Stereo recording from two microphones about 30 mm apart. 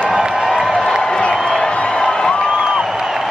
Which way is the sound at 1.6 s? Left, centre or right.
Left.